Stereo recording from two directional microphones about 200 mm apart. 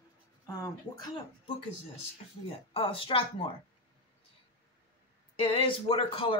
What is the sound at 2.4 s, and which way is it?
Speech, 30° left (ahead or behind).